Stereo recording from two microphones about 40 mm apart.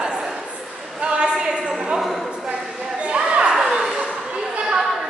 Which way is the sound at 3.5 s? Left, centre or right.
Centre.